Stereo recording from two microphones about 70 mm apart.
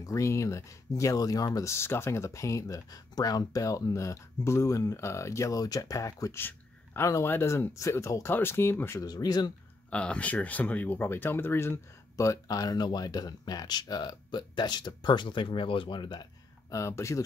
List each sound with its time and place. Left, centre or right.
0.0 s speech: left
1.7 s speech: left
6.3 s a sound: left
7.2 s speech: left
8.3 s speech: left
9.0 s speech: left
9.8 s speech: centre; by 16.3 s left
16.7 s speech: left